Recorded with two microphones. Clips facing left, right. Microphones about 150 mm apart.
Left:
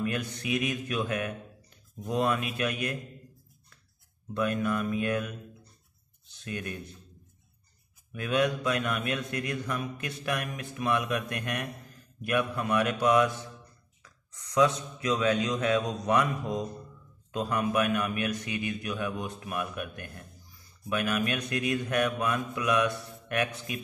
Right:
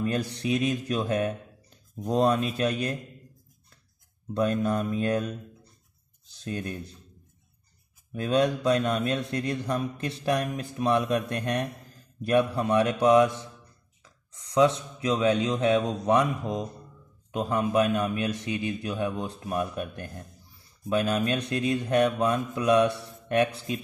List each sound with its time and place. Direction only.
0.0 s a man's voice: 35° right (ahead or behind)
4.3 s speech: 30° right (ahead or behind)
6.4 s speech: 30° right (ahead or behind)
8.1 s a man's voice: 30° right (ahead or behind)